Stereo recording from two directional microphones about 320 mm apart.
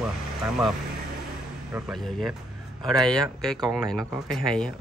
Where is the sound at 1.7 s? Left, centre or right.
Centre.